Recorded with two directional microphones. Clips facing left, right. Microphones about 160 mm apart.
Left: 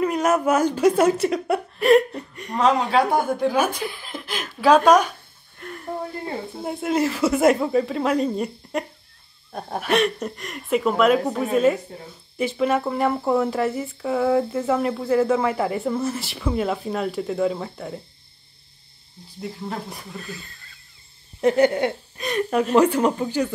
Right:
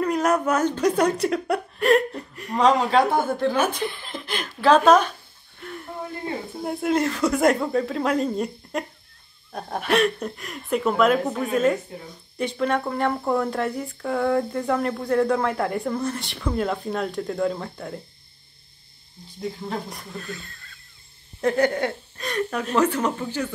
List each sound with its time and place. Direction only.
0.0 s speech: 5° left (ahead or behind)
6.6 s speech: centre (ahead or behind)
19.4 s speech: 5° left (ahead or behind)
21.4 s speech: 20° left (ahead or behind)